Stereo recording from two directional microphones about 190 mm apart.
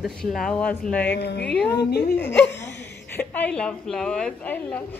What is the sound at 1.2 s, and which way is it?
Speech, 60° left (ahead or behind).